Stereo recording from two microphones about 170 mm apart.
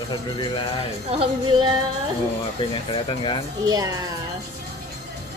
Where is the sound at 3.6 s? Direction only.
20° right (ahead or behind).